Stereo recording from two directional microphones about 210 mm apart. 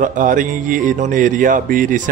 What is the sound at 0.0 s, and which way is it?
Speech, 40° right (ahead or behind).